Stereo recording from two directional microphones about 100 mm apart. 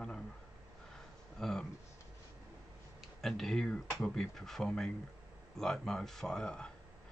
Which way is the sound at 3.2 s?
5° left (ahead or behind).